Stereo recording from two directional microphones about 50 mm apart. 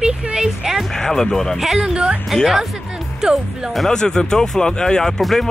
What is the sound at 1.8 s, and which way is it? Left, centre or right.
Speech, centre.